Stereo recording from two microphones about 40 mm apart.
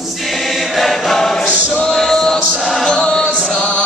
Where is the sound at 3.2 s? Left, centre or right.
Right.